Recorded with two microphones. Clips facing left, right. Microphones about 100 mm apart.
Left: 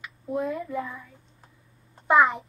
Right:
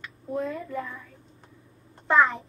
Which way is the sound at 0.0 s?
10° left (ahead or behind).